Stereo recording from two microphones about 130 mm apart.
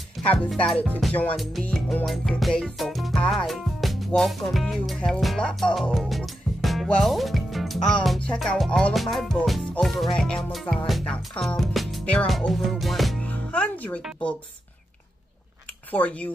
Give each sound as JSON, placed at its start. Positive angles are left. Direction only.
{"t": 0.2, "sound": "music", "side_deg": 0}
{"t": 12.3, "sound": "speech", "side_deg": 0}
{"t": 15.9, "sound": "speech", "side_deg": 10}